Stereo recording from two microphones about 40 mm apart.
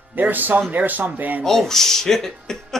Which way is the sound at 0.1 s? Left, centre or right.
Right.